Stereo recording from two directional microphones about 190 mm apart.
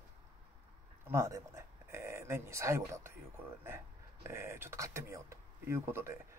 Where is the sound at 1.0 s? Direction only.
15° right (ahead or behind).